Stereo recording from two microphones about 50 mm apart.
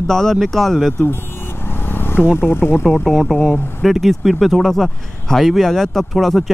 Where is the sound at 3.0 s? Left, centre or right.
Centre.